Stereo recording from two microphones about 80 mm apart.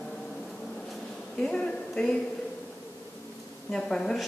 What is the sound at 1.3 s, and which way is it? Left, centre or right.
Speech, centre.